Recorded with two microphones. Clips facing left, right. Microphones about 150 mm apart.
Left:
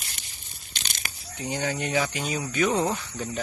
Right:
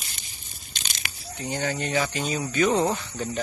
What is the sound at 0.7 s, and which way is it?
Crushing, 50° left (ahead or behind).